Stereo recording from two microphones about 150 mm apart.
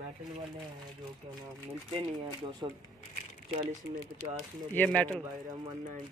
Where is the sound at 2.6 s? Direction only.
25° right (ahead or behind).